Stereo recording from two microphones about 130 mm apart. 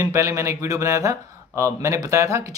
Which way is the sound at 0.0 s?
25° right (ahead or behind).